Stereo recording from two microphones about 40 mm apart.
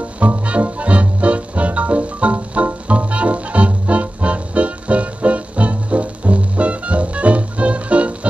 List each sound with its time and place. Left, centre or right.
0.5 s music: right